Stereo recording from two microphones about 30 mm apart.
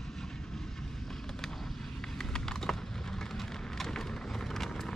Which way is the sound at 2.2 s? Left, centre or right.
Centre.